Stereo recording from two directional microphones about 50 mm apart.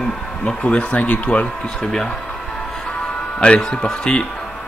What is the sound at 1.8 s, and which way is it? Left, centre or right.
Speech, centre.